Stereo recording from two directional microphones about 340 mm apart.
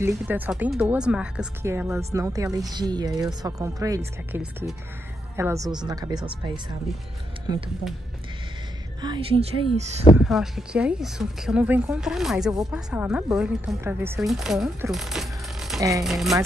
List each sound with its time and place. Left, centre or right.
0.0 s speech: centre
9.0 s speech: centre
10.1 s speech: centre